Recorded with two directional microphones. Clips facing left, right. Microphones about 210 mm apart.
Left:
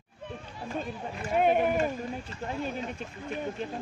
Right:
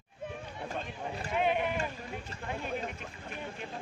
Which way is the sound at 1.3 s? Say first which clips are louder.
Left 6 dB; 45° left (ahead or behind).